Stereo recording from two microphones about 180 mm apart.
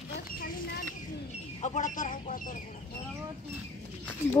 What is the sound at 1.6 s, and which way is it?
Speech, 45° left (ahead or behind).